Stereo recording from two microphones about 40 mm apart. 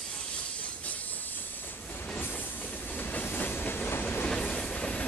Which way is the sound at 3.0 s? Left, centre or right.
Left.